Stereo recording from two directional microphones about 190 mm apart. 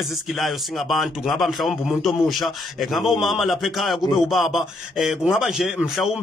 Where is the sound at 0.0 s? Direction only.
Centre (ahead or behind).